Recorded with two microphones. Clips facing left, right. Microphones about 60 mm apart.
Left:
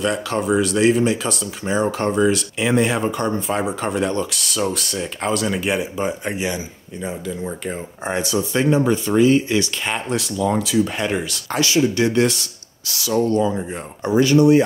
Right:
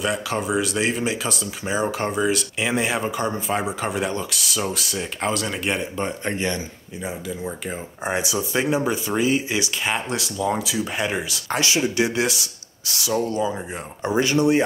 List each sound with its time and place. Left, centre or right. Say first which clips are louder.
0.0 s speech: left 3 dB; centre
7.0 s speech: left 3 dB; centre
11.4 s speech: left 4 dB; right; by 12.4 s centre
12.8 s speech: left 1 dB; right
13.1 s speech: left 5 dB; centre
14.0 s speech: left 5 dB; right